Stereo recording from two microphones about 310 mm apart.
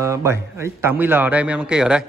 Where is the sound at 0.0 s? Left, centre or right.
Centre.